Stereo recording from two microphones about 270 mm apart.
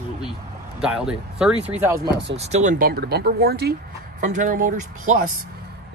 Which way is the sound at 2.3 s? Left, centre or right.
Right.